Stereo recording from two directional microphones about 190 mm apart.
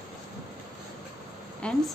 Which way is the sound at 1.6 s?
5° left (ahead or behind).